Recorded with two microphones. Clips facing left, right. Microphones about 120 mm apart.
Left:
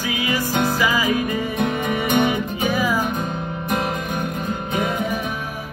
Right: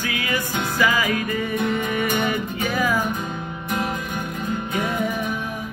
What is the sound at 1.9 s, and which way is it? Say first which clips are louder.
Music: left 4 dB; 25° left (ahead or behind).